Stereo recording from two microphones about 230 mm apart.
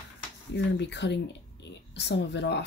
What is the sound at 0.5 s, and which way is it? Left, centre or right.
Speech, left.